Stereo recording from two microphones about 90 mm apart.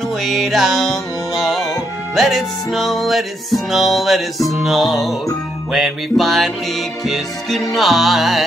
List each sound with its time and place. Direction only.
0.2 s music: centre (ahead or behind)